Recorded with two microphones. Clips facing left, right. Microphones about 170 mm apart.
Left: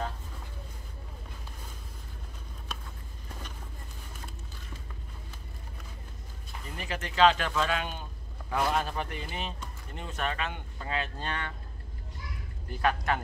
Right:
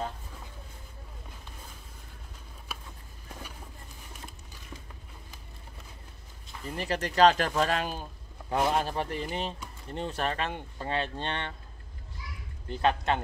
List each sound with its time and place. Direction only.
2.7 s a sound: 10° right (ahead or behind)
6.8 s speech: 35° right (ahead or behind)
12.6 s speech: 25° right (ahead or behind)